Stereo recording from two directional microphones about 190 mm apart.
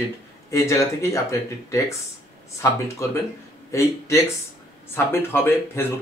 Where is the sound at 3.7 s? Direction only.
15° left (ahead or behind).